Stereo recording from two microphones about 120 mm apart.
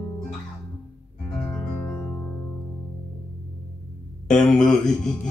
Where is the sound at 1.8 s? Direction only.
25° left (ahead or behind).